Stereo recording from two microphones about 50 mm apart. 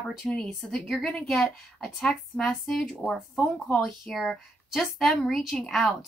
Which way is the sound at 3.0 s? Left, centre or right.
Right.